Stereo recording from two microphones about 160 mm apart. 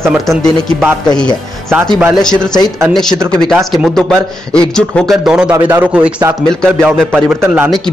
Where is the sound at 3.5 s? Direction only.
Centre (ahead or behind).